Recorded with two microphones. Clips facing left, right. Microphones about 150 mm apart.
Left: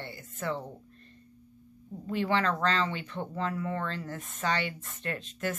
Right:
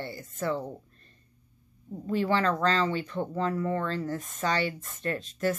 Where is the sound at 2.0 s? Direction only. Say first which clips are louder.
Right 2 dB; 35° right (ahead or behind).